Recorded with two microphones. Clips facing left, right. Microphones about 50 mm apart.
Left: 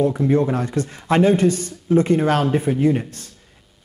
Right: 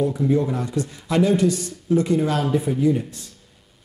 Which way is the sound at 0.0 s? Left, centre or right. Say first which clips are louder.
Left 3 dB; left.